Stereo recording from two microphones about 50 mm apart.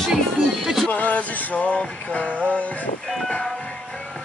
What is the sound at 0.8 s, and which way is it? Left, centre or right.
Music, left.